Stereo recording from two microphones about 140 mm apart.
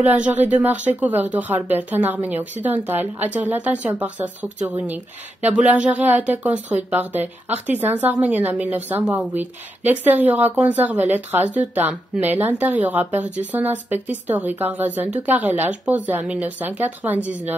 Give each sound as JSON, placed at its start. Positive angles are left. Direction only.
{"t": 0.0, "sound": "speech", "side_deg": -10}